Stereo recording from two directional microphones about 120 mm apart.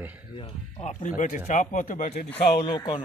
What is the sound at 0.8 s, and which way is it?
Speech, 90° left.